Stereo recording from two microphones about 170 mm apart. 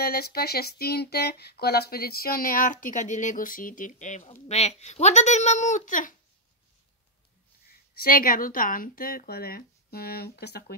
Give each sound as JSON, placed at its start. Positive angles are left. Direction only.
{"t": 0.0, "sound": "speech", "side_deg": 65}
{"t": 7.9, "sound": "speech", "side_deg": 60}